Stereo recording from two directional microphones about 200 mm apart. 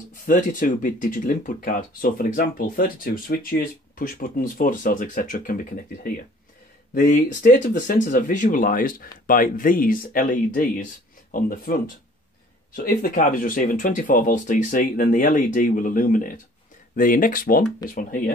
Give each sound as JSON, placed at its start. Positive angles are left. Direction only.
{"t": 0.2, "sound": "speech", "side_deg": 40}